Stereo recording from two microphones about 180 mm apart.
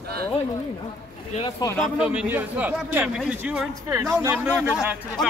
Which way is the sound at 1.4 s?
25° left (ahead or behind).